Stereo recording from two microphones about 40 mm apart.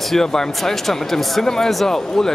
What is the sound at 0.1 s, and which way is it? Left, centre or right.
Speech, centre.